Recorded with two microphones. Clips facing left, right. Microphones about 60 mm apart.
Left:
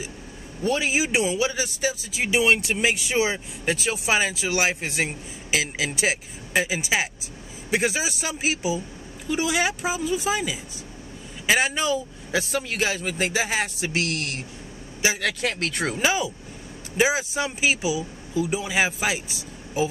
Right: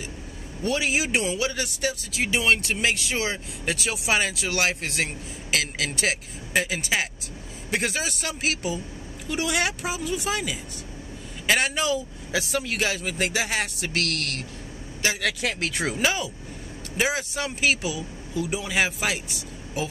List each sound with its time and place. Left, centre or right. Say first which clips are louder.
0.6 s speech: left 2 dB; centre
13.9 s speech: left 1 dB; centre
15.0 s speech: left 2 dB; centre
16.0 s speech: left 4 dB; centre